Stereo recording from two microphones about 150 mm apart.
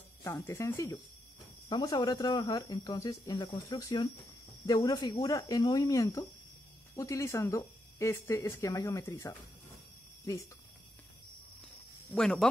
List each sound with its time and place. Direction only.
0.2 s speech: 20° left (ahead or behind)
1.7 s speech: 30° left (ahead or behind)
12.1 s speech: 5° left (ahead or behind)